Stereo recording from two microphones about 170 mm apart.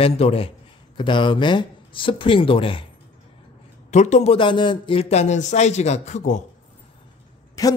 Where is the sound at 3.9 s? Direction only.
40° left (ahead or behind).